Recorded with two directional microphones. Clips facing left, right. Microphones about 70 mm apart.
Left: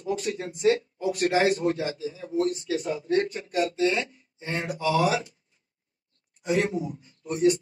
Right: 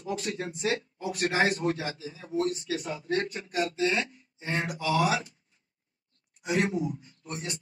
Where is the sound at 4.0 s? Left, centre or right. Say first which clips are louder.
Left 1 dB; centre.